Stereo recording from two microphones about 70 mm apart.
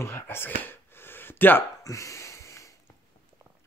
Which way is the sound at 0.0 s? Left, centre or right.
Left.